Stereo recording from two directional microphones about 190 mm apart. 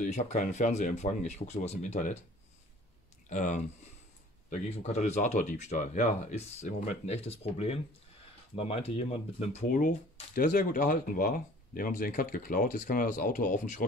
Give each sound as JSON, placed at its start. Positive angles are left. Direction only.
{"t": 0.0, "sound": "speech", "side_deg": 40}
{"t": 3.3, "sound": "speech", "side_deg": 40}